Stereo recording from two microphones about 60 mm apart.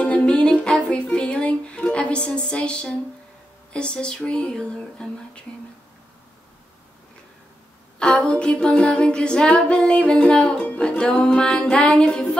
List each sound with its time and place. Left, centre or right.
0.0 s music: centre
8.3 s music: centre